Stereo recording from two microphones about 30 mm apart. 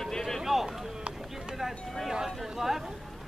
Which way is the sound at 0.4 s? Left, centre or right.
Centre.